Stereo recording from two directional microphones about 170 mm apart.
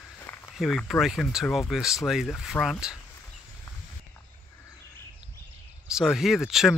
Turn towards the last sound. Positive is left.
turn(degrees=0)  # may be behind; listen again after turning